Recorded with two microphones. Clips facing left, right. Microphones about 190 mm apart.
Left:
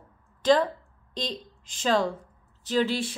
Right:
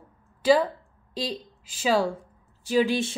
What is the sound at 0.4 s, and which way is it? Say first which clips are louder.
A woman's voice: right 1 dB; 10° right (ahead or behind).